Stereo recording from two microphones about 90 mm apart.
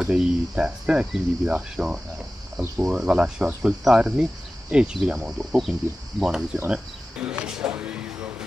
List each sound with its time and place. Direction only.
0.0 s speech: 10° right (ahead or behind)
6.7 s cricket: 10° right (ahead or behind)